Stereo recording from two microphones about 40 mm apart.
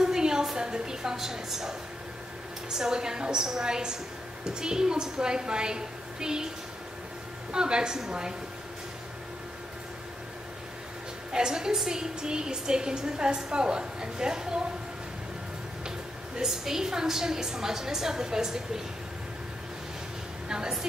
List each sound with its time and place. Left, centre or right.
0.0 s a sound: centre
0.6 s a woman's voice: centre
2.8 s a woman's voice: centre
7.5 s a woman's voice: right
11.3 s a woman's voice: centre
16.4 s a woman's voice: centre
20.4 s a woman's voice: centre